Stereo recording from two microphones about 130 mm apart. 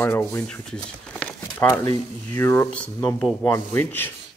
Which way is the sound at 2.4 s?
15° left (ahead or behind).